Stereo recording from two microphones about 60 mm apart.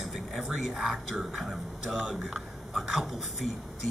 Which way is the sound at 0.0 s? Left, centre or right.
Centre.